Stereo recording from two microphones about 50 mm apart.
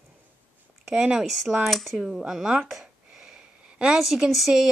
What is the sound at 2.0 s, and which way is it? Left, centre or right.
Speech, centre.